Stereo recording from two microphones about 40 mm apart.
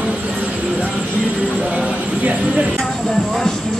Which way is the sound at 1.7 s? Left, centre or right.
Right.